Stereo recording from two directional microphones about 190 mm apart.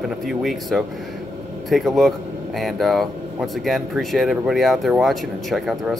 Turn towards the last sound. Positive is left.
turn(degrees=0)  # may be behind; listen again after turning